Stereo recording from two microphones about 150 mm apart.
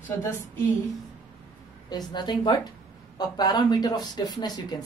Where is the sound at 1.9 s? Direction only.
30° left (ahead or behind).